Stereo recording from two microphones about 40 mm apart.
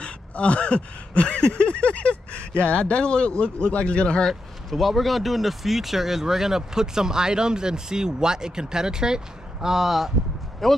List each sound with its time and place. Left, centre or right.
0.0 s a sound: left
2.6 s speech: left
4.3 s speech: centre
10.6 s speech: centre